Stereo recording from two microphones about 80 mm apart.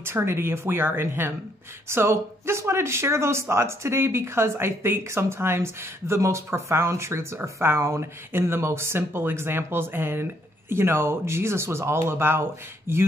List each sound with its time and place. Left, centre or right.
0.0 s speech: right